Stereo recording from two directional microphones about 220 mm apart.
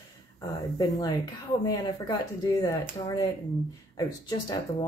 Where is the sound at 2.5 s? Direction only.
15° left (ahead or behind).